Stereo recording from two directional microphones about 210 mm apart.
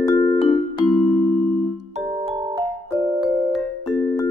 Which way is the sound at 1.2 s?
10° left (ahead or behind).